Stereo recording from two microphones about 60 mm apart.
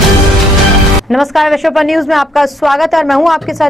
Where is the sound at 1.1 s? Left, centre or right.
Centre.